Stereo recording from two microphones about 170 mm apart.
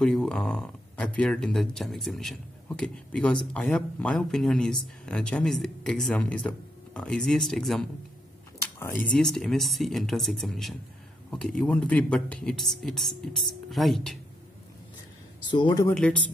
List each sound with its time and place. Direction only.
0.0 s speech: 5° left (ahead or behind)
8.5 s speech: 15° left (ahead or behind)
15.5 s speech: 25° left (ahead or behind)
15.9 s speech: 5° left (ahead or behind)